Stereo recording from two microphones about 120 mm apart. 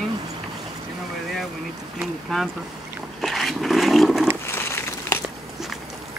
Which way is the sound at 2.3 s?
Centre (ahead or behind).